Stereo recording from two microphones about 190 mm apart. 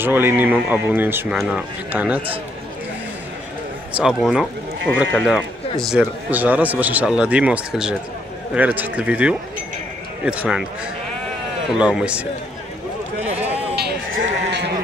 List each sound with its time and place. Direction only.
0.0 s a man's voice: 10° right (ahead or behind)
3.9 s a man's voice: centre (ahead or behind)
11.8 s speech: 5° right (ahead or behind)
13.8 s sheep: 60° right (ahead or behind)